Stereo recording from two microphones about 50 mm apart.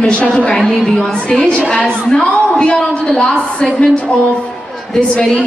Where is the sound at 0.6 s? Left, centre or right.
Centre.